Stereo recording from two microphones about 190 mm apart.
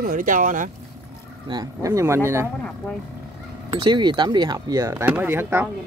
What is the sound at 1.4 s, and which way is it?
Speech, 20° right (ahead or behind).